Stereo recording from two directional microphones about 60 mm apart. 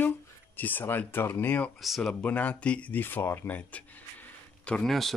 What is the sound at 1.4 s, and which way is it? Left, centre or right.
Speech, left.